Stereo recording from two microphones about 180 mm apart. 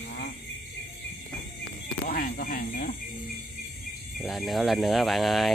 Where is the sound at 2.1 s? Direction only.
50° left (ahead or behind).